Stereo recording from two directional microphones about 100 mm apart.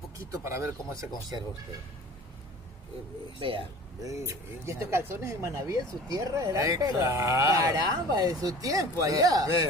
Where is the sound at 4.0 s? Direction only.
30° right (ahead or behind).